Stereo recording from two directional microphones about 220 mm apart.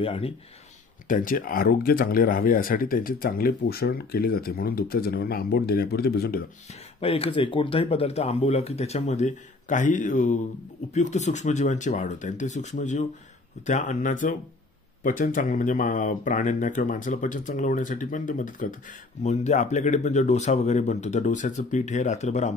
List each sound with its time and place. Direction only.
0.0 s speech: 25° left (ahead or behind)
1.0 s speech: 40° left (ahead or behind)
6.7 s speech: 25° left (ahead or behind)